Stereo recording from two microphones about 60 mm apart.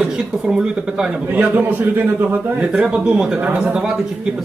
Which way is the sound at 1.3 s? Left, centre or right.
Right.